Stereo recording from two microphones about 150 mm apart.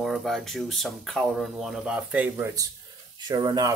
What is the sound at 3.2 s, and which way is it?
Speech, 30° right (ahead or behind).